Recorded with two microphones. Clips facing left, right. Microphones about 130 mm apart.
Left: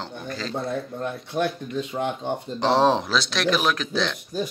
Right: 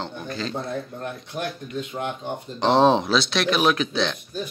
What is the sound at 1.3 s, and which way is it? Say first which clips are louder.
Speech: left 5 dB; 35° left (ahead or behind).